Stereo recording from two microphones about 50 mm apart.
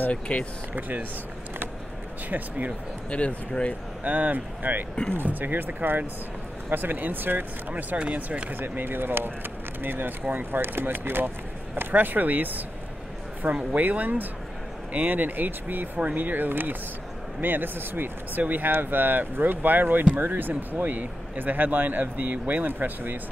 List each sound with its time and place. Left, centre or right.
0.1 s speech: left
0.7 s speech: right
2.2 s speech: right
3.1 s speech: left
4.0 s speech: right
7.7 s speech: right
8.5 s speech: right